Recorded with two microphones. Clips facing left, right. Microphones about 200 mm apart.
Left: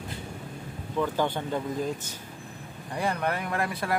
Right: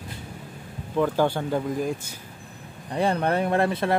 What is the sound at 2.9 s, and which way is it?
Speech, 30° right (ahead or behind).